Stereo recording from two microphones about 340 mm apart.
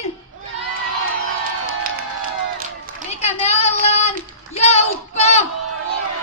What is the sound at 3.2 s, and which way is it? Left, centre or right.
A woman's voice, centre.